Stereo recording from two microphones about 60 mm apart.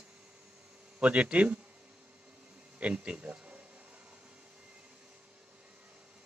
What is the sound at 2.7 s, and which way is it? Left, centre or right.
Speech, right.